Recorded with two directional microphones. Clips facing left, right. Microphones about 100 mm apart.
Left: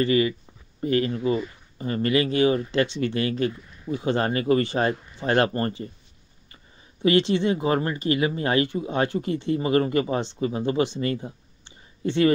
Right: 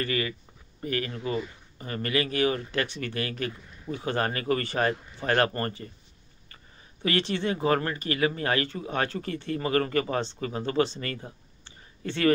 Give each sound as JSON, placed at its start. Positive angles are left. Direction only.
{"t": 0.0, "sound": "speech", "side_deg": 20}